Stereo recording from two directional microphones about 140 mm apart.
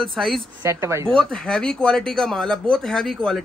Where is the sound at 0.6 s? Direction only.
20° right (ahead or behind).